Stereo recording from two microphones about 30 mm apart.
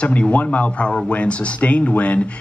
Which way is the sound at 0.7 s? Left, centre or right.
Left.